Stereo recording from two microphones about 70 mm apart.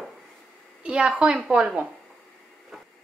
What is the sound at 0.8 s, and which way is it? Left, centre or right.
Speech, centre.